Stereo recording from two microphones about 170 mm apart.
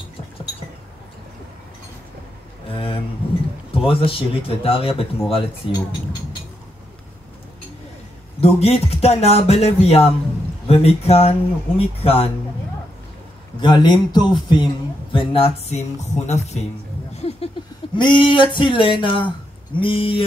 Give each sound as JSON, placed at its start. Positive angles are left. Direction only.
{"t": 2.7, "sound": "a sound", "side_deg": 30}
{"t": 3.7, "sound": "speech", "side_deg": 30}
{"t": 8.4, "sound": "speech", "side_deg": 35}
{"t": 13.6, "sound": "speech", "side_deg": 25}
{"t": 17.1, "sound": "a sound", "side_deg": 40}
{"t": 17.9, "sound": "speech", "side_deg": 30}